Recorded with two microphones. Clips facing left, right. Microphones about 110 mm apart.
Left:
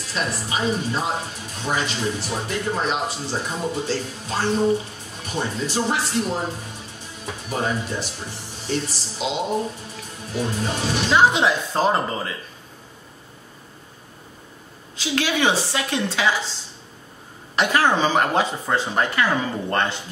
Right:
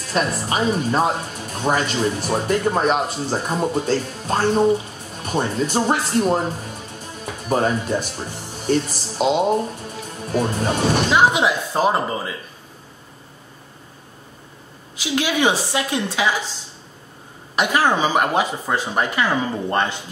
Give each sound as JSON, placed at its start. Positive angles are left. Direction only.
{"t": 0.1, "sound": "speech", "side_deg": -50}
{"t": 7.4, "sound": "speech", "side_deg": -50}
{"t": 11.1, "sound": "speech", "side_deg": -15}
{"t": 15.0, "sound": "speech", "side_deg": -15}
{"t": 17.6, "sound": "speech", "side_deg": -15}